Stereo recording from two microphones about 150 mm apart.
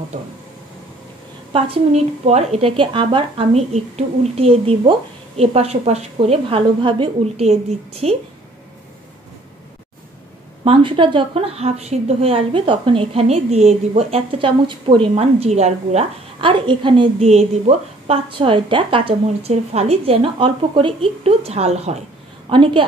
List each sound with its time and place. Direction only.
2.2 s a woman's voice: 45° right (ahead or behind)
10.6 s a woman's voice: 35° right (ahead or behind)
17.3 s a woman's voice: 45° right (ahead or behind)
22.5 s a woman's voice: 35° right (ahead or behind)